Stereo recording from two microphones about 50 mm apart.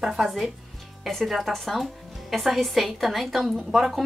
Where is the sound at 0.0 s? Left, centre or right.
Centre.